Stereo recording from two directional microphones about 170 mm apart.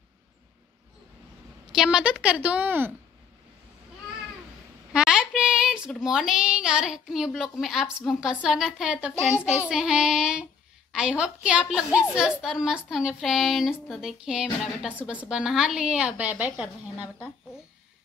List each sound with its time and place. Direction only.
1.7 s a woman's voice: 5° right (ahead or behind)
4.9 s a woman's voice: 5° right (ahead or behind)